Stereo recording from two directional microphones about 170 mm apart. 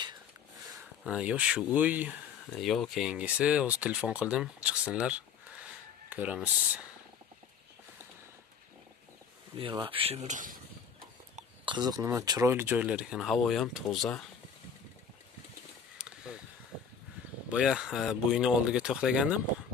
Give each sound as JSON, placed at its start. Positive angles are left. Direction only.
{"t": 1.0, "sound": "speech", "side_deg": -5}
{"t": 9.6, "sound": "speech", "side_deg": -30}
{"t": 11.6, "sound": "speech", "side_deg": -25}
{"t": 16.0, "sound": "a sound", "side_deg": -5}
{"t": 17.5, "sound": "speech", "side_deg": -5}